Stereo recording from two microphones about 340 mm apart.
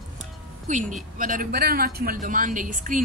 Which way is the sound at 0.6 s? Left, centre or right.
Right.